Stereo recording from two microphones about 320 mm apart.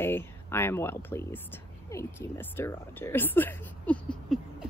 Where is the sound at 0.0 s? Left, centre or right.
Centre.